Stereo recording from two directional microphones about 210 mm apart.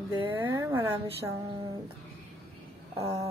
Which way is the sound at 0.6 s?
15° right (ahead or behind).